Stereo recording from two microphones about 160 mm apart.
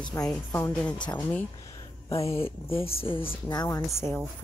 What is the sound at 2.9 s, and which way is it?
Speech, 35° left (ahead or behind).